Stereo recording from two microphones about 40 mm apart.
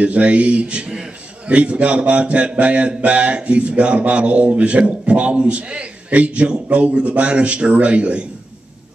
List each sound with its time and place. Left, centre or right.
0.0 s speech: right